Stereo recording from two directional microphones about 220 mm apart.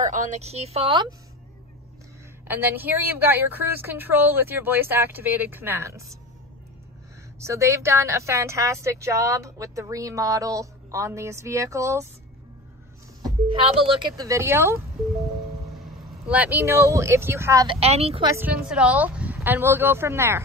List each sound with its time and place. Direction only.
0.0 s a woman's voice: 35° right (ahead or behind)
2.4 s a woman's voice: 10° right (ahead or behind)
7.3 s a woman's voice: 10° right (ahead or behind)
13.2 s a woman's voice: 25° right (ahead or behind)
16.3 s a woman's voice: 5° right (ahead or behind)
17.7 s a woman's voice: 25° right (ahead or behind)
18.3 s a woman's voice: 5° right (ahead or behind)